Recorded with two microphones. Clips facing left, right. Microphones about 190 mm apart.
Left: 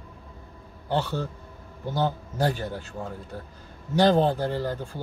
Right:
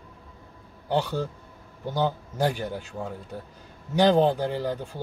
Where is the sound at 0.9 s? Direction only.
15° right (ahead or behind).